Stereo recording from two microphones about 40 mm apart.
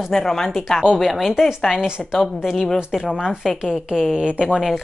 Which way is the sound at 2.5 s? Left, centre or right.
Centre.